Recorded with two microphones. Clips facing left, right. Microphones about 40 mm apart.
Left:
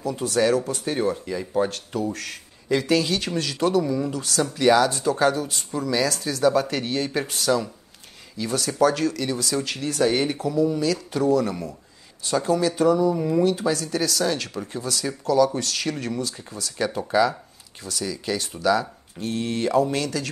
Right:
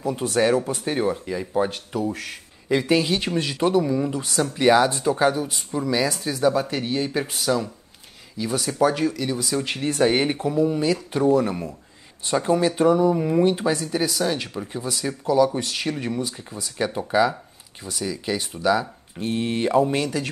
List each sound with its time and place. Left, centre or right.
0.0 s speech: right
0.9 s speech: centre
9.7 s speech: right